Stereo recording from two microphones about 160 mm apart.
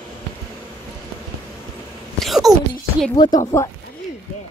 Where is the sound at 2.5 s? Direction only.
25° right (ahead or behind).